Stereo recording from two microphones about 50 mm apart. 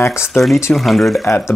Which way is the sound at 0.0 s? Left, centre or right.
Left.